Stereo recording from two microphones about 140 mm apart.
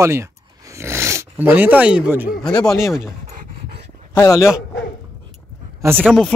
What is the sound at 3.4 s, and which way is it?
Dog, 90° right.